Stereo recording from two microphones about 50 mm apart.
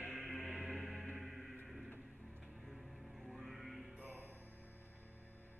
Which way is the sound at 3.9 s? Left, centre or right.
Right.